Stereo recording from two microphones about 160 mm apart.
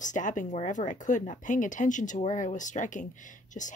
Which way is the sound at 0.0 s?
50° left (ahead or behind).